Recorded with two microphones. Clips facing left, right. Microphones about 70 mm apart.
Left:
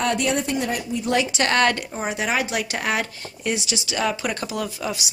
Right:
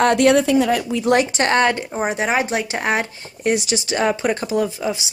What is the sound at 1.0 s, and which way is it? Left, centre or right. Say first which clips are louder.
Speech: right 5 dB; right.